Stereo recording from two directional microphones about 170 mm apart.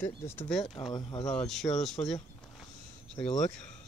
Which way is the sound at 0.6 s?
30° left (ahead or behind).